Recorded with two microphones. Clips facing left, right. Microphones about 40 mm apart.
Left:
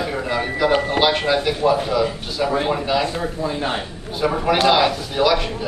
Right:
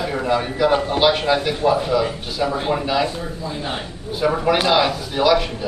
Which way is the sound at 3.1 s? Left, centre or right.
Left.